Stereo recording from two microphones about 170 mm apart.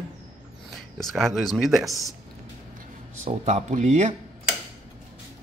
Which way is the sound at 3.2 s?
40° right (ahead or behind).